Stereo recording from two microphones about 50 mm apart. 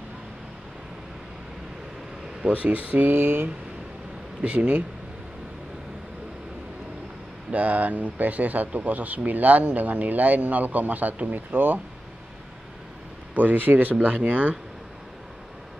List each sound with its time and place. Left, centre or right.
2.4 s speech: right
4.4 s speech: right
7.5 s speech: right
13.3 s speech: right